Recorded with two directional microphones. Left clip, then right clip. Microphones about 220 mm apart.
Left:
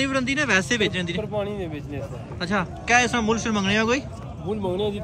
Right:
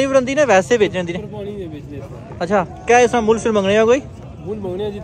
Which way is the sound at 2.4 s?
5° left (ahead or behind).